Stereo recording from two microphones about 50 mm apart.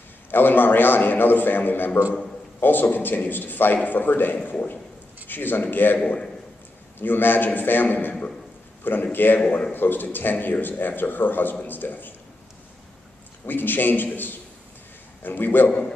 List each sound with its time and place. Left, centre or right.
0.3 s a man's voice: left
7.0 s a man's voice: left
9.5 s a man's voice: left
9.8 s a man's voice: left
13.5 s a man's voice: left